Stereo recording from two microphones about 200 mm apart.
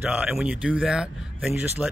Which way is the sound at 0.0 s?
5° right (ahead or behind).